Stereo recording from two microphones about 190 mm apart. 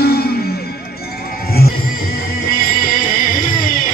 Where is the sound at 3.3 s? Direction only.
45° left (ahead or behind).